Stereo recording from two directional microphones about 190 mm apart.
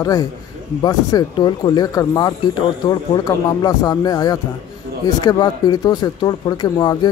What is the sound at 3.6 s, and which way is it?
Speech, 20° left (ahead or behind).